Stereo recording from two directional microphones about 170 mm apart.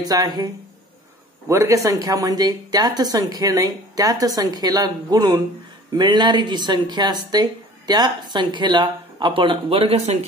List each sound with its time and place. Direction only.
0.0 s speech: 25° right (ahead or behind)
1.5 s speech: 20° right (ahead or behind); by 10.1 s 35° right (ahead or behind)